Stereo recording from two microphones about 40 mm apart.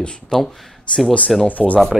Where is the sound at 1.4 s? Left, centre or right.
Left.